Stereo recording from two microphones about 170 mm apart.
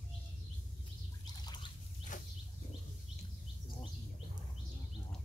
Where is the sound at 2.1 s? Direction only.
50° left (ahead or behind).